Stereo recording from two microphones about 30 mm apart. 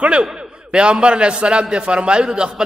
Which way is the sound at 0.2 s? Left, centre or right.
Right.